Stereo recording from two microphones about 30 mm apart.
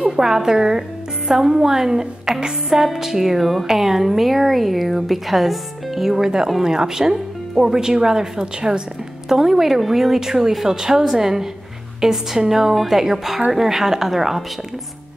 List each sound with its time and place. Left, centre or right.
0.1 s a woman's voice: centre
9.3 s a woman's voice: centre